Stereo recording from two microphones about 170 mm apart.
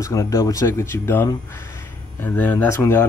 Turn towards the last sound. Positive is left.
turn(degrees=15)  # may be behind; listen again after turning